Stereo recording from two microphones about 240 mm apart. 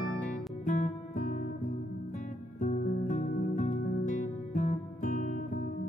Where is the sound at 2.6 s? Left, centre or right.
Left.